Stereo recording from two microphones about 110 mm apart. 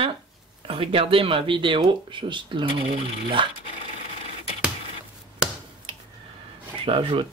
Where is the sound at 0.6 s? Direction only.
55° right (ahead or behind).